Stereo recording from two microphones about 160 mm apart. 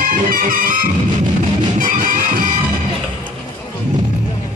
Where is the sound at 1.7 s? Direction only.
60° right (ahead or behind).